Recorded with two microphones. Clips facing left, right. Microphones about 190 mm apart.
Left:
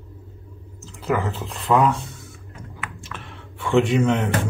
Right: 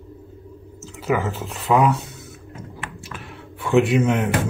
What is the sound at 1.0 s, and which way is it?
Speech, centre (ahead or behind).